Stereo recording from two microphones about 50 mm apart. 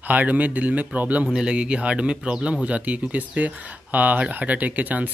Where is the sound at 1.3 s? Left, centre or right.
Centre.